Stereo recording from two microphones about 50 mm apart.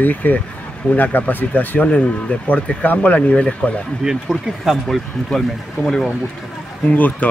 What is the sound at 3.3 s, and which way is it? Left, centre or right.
Speech, left.